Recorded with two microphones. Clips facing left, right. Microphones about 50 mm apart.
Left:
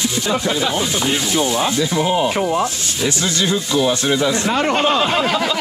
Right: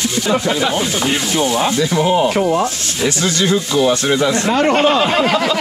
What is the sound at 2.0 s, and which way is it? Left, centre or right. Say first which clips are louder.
Speech: right 4 dB; right.